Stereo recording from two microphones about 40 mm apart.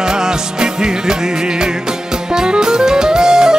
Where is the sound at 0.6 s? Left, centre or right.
Centre.